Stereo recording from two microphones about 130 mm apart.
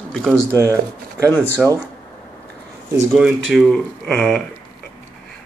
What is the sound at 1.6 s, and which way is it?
Speech, 5° right (ahead or behind).